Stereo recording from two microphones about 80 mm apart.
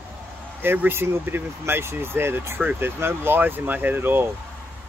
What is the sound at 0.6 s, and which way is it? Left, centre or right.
Speech, right.